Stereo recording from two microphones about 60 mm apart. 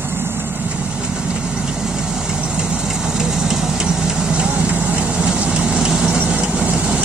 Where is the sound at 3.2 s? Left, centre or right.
Centre.